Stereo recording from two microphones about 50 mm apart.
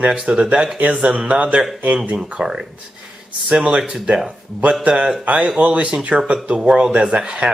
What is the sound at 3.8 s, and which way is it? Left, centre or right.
Speech, centre.